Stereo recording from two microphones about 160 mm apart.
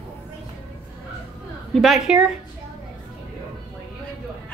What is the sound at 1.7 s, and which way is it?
Music, centre (ahead or behind).